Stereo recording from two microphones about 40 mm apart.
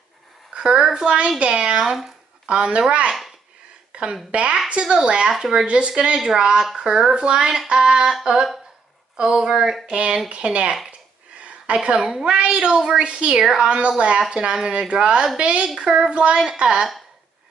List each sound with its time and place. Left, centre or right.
0.6 s a sound: right
0.9 s a woman's voice: right
1.9 s speech: centre
2.4 s speech: right
3.9 s a sound: right
4.3 s a woman's voice: right; by 5.7 s centre
5.7 s a woman's voice: right
6.1 s a woman's voice: centre
9.5 s speech: centre
9.8 s a woman's voice: right
12.0 s speech: centre
12.3 s a woman's voice: right